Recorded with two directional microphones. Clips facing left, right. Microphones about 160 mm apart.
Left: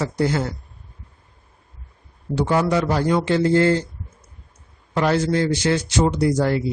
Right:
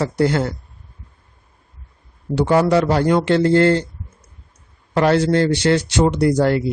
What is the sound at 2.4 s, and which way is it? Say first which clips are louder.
A man's voice: right 4 dB; 65° right (ahead or behind).